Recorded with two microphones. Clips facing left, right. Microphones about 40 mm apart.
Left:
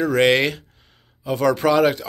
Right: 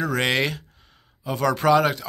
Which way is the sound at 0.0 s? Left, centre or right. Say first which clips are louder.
Left 6 dB; centre.